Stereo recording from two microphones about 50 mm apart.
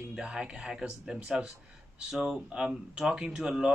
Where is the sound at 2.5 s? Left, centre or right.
Right.